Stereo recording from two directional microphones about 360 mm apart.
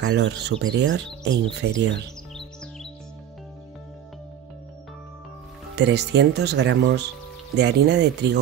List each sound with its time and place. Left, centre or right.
0.0 s speech: right
2.3 s music: centre
5.8 s speech: right